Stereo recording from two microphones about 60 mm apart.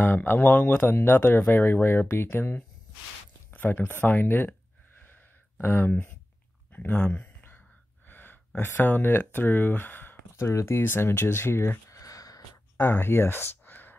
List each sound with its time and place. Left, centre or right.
0.0 s speech: left
3.5 s speech: left
5.6 s speech: left
6.7 s a sound: left
8.7 s speech: left
10.4 s speech: left
11.9 s a sound: left
12.7 s speech: left